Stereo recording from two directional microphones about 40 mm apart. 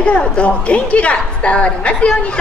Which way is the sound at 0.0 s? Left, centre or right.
Left.